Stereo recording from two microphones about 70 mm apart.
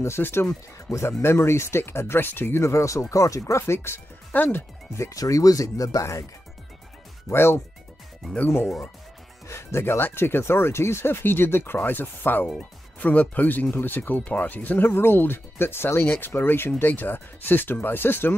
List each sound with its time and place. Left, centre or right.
0.0 s speech: left
4.3 s speech: left
4.9 s speech: left
7.2 s speech: left
9.5 s speech: left